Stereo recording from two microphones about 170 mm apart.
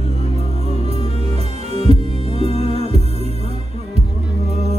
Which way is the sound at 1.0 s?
40° right (ahead or behind).